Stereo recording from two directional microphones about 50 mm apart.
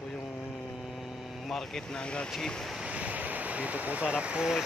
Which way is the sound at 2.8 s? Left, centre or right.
Right.